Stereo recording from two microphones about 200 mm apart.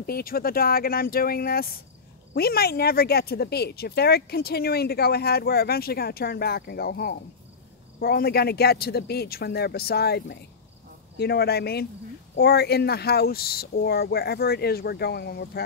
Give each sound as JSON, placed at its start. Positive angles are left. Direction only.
{"t": 0.0, "sound": "speech", "side_deg": 45}